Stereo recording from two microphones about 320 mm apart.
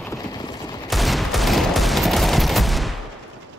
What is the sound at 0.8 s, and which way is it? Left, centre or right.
Fusillade, centre.